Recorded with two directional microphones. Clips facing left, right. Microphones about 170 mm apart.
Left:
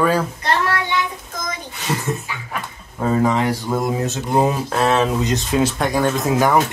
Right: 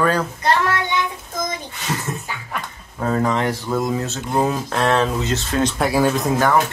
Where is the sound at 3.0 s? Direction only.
5° left (ahead or behind).